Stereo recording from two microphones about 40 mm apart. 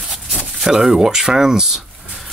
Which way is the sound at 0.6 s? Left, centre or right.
Centre.